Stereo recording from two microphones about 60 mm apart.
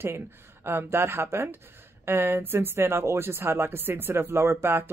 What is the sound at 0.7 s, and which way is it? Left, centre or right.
Speech, right.